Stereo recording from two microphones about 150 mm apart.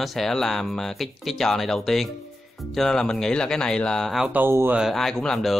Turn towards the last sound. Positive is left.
turn(degrees=5)  # may be behind; listen again after turning